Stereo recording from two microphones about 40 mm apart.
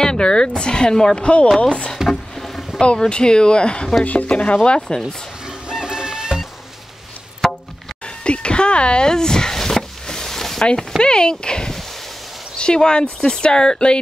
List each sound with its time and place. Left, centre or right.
0.0 s speech: centre
2.0 s a sound: centre
2.8 s speech: left
4.0 s speech: left
4.6 s speech: centre
5.7 s music: centre
8.2 s a sound: left; by 10.6 s centre
11.0 s speech: left